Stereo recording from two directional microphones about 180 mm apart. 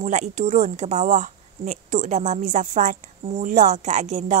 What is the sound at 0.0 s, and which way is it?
Speech, 40° right (ahead or behind).